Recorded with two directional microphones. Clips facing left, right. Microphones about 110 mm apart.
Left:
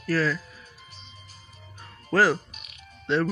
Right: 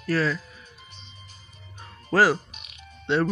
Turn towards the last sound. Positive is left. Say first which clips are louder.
# right 1 dB
turn(degrees=0)  # may be behind; listen again after turning